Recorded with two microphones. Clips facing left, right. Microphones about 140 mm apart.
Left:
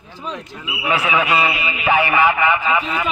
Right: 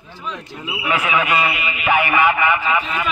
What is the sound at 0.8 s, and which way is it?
A man's voice, 25° left (ahead or behind).